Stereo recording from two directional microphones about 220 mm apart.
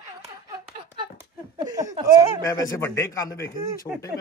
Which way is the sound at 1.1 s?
15° right (ahead or behind).